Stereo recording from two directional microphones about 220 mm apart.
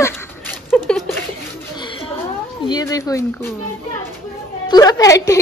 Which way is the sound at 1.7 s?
20° left (ahead or behind).